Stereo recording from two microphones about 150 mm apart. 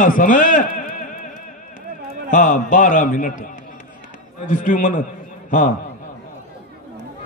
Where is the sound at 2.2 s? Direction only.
60° left (ahead or behind).